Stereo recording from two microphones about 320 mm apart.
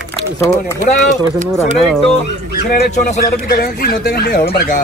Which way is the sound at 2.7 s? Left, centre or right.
Left.